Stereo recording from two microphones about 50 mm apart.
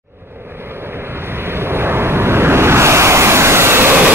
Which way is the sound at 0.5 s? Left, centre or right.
Right.